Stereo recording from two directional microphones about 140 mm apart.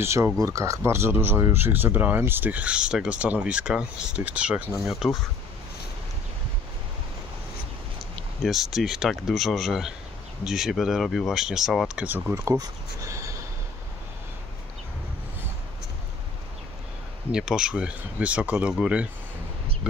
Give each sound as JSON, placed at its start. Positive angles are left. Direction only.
{"t": 0.0, "sound": "speech", "side_deg": -20}
{"t": 8.5, "sound": "speech", "side_deg": 0}
{"t": 17.3, "sound": "speech", "side_deg": -5}